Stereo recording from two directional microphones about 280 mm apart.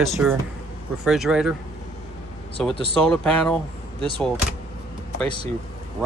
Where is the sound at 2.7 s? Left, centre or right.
Centre.